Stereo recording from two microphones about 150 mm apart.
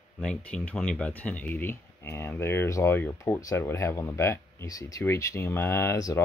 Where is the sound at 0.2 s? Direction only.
5° left (ahead or behind).